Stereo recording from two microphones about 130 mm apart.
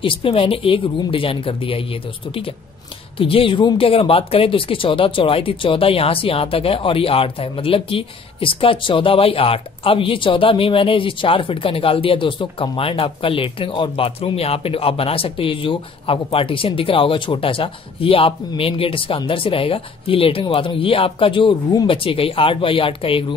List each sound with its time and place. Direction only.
0.0 s speech: 45° left (ahead or behind)